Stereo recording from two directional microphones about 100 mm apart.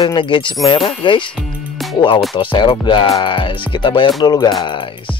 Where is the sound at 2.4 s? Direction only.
50° left (ahead or behind).